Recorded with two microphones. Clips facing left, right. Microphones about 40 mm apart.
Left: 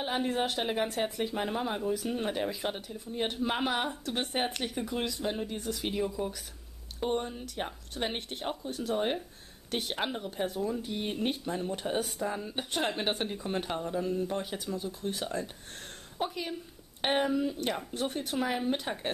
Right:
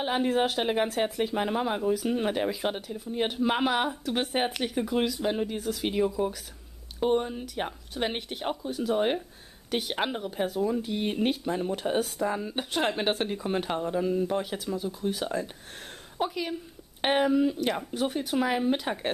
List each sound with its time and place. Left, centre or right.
0.0 s speech: centre
5.6 s speech: centre
5.9 s speech: centre